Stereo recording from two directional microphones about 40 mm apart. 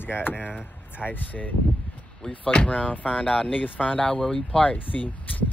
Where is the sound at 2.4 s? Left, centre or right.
Left.